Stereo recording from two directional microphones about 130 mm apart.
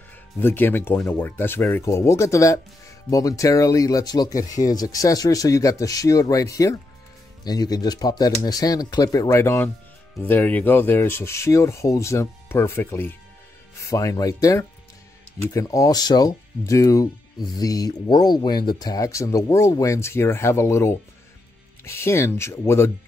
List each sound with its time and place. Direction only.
0.4 s speech: 15° left (ahead or behind)